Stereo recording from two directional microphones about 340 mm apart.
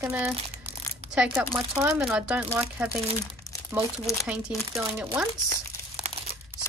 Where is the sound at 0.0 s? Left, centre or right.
Centre.